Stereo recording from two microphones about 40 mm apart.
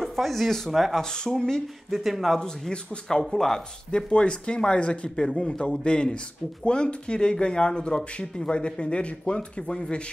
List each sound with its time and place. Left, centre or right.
0.0 s speech: centre
1.0 s speech: centre
2.0 s speech: centre
2.7 s speech: left
3.2 s speech: centre
3.9 s speech: left